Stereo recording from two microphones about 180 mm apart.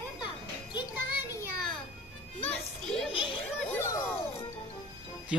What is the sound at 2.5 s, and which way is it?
Music, 5° left (ahead or behind).